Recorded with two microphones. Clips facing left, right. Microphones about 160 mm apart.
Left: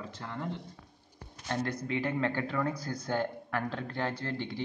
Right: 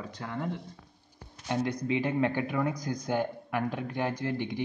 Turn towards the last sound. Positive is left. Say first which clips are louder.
# right 4 dB
turn(degrees=-15)  # may be behind; listen again after turning